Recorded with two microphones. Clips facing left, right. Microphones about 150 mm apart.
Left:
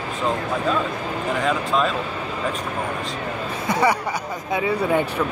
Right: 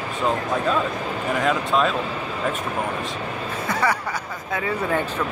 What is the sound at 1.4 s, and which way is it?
Speech, centre (ahead or behind).